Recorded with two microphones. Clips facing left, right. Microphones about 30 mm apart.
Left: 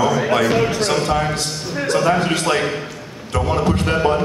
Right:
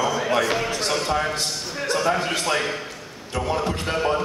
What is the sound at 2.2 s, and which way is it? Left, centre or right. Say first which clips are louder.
Speech: left 5 dB; left.